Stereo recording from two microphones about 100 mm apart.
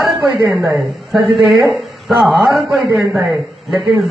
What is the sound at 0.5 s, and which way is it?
Speech, 25° right (ahead or behind).